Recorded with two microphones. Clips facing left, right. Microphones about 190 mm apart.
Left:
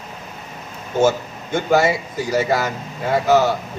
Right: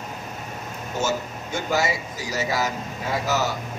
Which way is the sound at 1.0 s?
55° left (ahead or behind).